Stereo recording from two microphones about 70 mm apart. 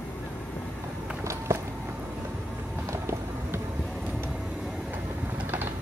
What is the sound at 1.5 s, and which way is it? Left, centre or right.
Walk, right.